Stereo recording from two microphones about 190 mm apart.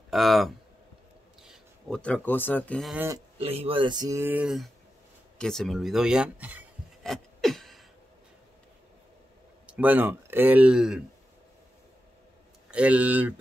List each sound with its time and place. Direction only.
0.1 s speech: centre (ahead or behind)
2.9 s speech: 10° right (ahead or behind)
3.3 s speech: 30° right (ahead or behind); by 6.6 s 10° right (ahead or behind)
7.0 s a sound: centre (ahead or behind)
9.7 s speech: 10° right (ahead or behind)
12.7 s speech: 5° right (ahead or behind)